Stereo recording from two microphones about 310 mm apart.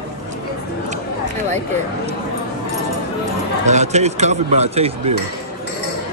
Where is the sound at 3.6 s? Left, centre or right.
Right.